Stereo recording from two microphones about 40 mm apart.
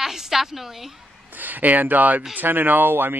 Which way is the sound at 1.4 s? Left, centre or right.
Right.